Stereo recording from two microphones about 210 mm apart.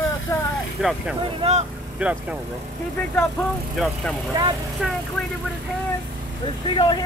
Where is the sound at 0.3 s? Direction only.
10° left (ahead or behind).